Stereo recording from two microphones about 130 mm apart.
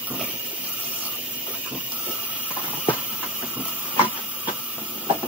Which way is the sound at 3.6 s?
10° right (ahead or behind).